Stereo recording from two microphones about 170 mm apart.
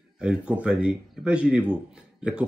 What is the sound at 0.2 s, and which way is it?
A man's voice, 5° right (ahead or behind).